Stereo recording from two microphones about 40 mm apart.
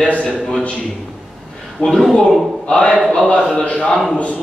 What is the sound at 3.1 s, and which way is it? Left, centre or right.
Speech, left.